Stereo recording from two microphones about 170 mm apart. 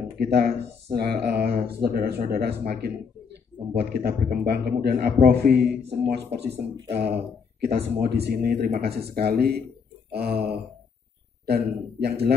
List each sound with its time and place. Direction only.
0.2 s a man's voice: 65° right (ahead or behind)